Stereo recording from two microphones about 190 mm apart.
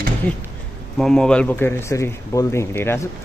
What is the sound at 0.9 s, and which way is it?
Speech, 5° left (ahead or behind).